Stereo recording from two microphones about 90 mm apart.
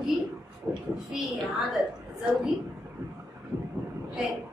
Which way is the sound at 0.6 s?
15° right (ahead or behind).